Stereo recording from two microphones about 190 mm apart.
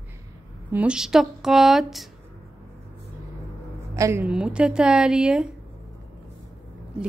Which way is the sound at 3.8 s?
15° right (ahead or behind).